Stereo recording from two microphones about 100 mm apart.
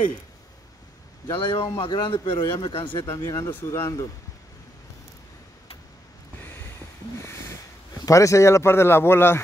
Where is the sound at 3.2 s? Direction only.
35° left (ahead or behind).